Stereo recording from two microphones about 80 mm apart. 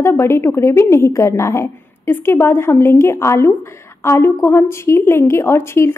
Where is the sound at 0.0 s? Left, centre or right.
Left.